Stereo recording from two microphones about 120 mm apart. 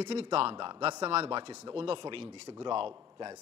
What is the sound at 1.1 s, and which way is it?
Speech, 50° right (ahead or behind).